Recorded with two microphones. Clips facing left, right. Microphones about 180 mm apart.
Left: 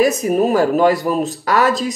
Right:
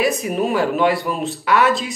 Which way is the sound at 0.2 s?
40° left (ahead or behind).